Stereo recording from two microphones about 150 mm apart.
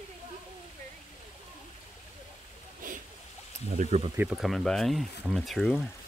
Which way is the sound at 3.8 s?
50° right (ahead or behind).